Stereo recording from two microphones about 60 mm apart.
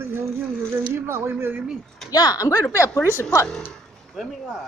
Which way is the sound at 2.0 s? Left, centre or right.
Left.